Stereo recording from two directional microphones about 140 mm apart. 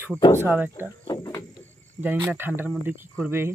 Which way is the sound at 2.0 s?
15° right (ahead or behind).